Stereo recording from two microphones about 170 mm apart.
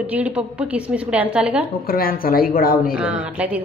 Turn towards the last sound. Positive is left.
turn(degrees=-5)  # may be behind; listen again after turning